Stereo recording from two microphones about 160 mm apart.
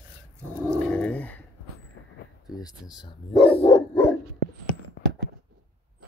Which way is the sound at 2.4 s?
25° left (ahead or behind).